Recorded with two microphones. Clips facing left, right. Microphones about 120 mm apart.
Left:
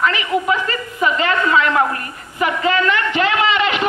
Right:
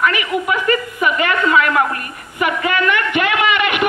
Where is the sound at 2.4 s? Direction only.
65° right (ahead or behind).